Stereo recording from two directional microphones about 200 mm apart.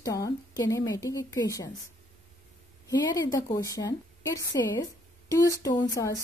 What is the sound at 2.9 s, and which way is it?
A woman's voice, 20° left (ahead or behind).